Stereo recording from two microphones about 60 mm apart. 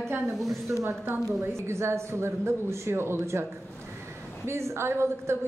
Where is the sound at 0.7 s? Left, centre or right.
Right.